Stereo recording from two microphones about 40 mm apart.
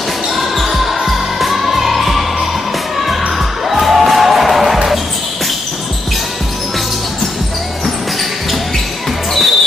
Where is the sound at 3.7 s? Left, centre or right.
Centre.